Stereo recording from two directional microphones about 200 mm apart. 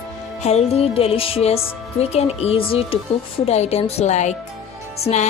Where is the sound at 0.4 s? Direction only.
35° left (ahead or behind).